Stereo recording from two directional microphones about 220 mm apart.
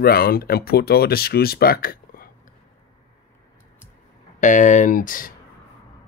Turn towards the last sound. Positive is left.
turn(degrees=40)  # may be behind; listen again after turning